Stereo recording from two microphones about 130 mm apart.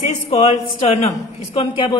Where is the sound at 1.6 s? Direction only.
45° left (ahead or behind).